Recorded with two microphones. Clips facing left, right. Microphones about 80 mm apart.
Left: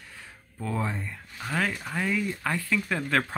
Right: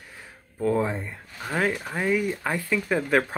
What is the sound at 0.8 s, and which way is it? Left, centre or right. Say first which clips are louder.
Speech: right 5 dB; right.